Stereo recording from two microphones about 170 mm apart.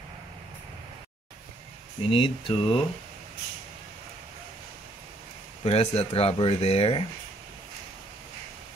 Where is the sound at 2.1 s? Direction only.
35° left (ahead or behind).